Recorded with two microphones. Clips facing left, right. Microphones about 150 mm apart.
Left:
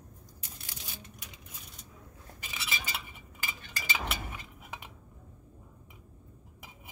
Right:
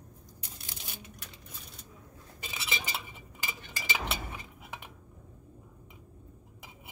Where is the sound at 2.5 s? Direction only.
25° right (ahead or behind).